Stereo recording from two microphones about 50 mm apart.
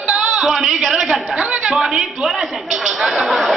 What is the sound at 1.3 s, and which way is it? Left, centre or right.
Speech, right.